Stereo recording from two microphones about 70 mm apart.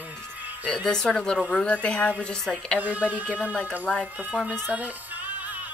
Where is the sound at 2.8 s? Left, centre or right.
Right.